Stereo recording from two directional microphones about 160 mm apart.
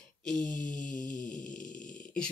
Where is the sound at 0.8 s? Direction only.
55° left (ahead or behind).